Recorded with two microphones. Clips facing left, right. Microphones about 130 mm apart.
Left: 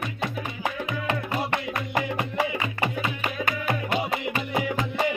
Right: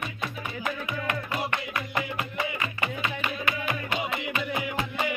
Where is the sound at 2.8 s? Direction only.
40° left (ahead or behind).